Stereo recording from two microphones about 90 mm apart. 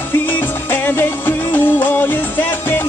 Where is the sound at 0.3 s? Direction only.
20° left (ahead or behind).